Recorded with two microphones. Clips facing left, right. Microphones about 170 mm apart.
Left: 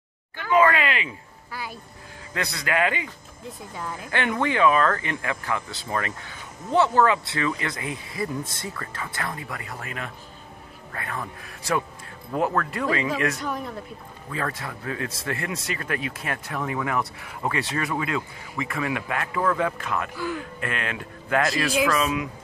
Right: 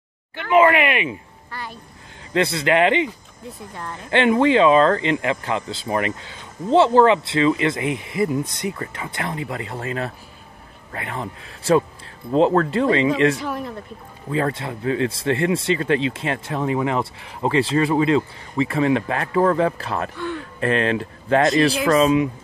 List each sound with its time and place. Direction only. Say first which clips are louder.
0.4 s speech: right 5 dB; 20° right (ahead or behind)
1.5 s speech: right 1 dB; 5° left (ahead or behind)
2.3 s speech: right 8 dB; 25° right (ahead or behind)
3.4 s speech: right 1 dB; centre (ahead or behind)
4.1 s speech: right 9 dB; 20° right (ahead or behind)
13.4 s speech: right 3 dB; centre (ahead or behind)
14.3 s speech: right 8 dB; 25° right (ahead or behind)